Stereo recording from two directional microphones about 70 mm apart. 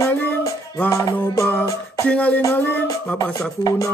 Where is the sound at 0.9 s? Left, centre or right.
Left.